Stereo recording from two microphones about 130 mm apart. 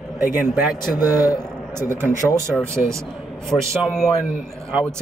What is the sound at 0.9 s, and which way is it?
Speech, 30° left (ahead or behind).